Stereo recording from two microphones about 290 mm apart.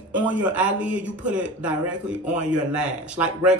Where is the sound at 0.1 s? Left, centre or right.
Centre.